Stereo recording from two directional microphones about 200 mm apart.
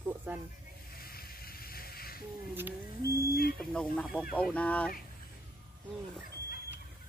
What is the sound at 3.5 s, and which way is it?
Speech, 5° left (ahead or behind).